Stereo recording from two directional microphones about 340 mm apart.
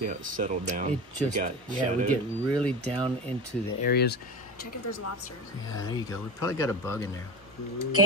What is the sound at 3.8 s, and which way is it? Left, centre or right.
Speech, left.